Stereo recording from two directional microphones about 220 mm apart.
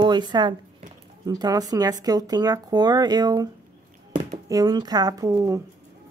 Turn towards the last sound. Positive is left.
turn(degrees=-15)  # may be behind; listen again after turning